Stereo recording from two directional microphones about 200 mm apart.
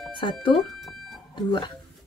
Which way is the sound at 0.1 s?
25° left (ahead or behind).